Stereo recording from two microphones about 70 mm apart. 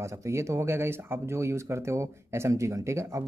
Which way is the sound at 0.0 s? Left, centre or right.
Right.